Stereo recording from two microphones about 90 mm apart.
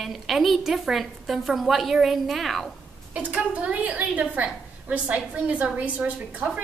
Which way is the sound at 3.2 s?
15° right (ahead or behind).